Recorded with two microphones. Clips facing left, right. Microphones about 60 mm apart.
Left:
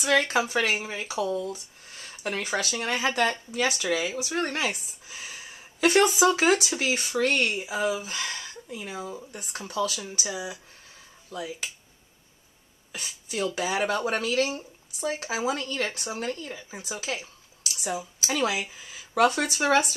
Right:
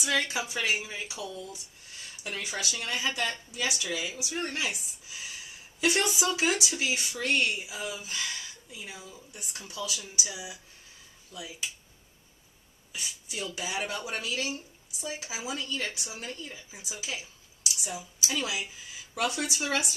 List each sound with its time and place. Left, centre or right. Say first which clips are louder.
0.0 s speech: left 7 dB; left
12.9 s a woman's voice: left 5 dB; left